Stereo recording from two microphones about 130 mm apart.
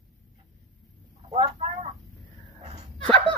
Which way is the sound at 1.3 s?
55° right (ahead or behind).